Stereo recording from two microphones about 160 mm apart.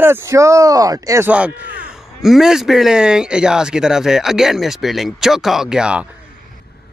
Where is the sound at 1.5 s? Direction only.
90° right.